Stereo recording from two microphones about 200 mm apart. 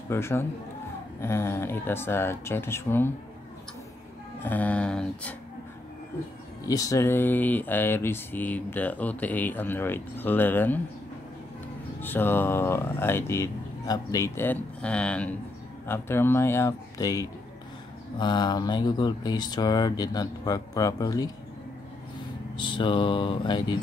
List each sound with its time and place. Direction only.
0.1 s speech: 10° left (ahead or behind)
4.4 s speech: 10° left (ahead or behind)
6.7 s speech: 15° left (ahead or behind)
12.0 s speech: 10° left (ahead or behind)
22.6 s speech: 25° left (ahead or behind)